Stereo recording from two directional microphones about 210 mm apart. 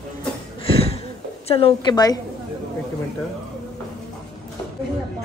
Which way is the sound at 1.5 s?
25° left (ahead or behind).